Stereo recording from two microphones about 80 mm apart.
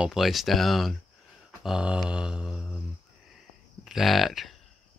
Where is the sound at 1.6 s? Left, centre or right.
Centre.